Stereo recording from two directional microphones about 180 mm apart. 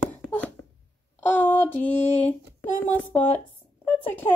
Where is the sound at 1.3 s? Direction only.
10° left (ahead or behind).